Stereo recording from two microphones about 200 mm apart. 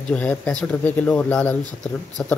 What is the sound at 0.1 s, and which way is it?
Speech, 5° left (ahead or behind).